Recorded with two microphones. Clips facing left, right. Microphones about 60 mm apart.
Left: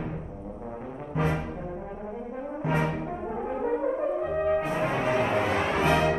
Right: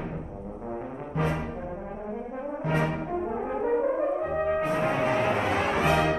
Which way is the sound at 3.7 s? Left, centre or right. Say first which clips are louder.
Right 2 dB; right.